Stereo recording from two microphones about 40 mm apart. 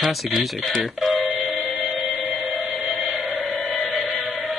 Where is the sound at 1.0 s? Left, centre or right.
Centre.